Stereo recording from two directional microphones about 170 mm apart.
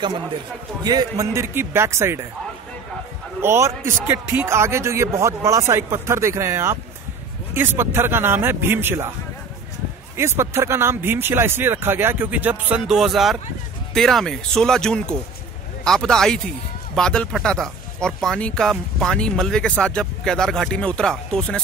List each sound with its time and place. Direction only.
0.8 s a man's voice: 20° right (ahead or behind)
3.3 s a man's voice: 15° right (ahead or behind)
10.1 s a man's voice: 15° right (ahead or behind); by 21.5 s 5° left (ahead or behind)